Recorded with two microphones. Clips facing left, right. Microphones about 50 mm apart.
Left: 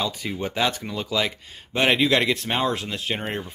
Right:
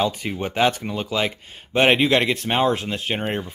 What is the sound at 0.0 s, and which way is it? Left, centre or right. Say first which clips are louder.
Speech: right 4 dB; right.